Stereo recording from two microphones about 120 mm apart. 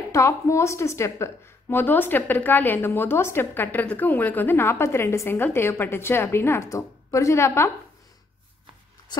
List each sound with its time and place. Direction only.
0.1 s a woman's voice: 25° left (ahead or behind)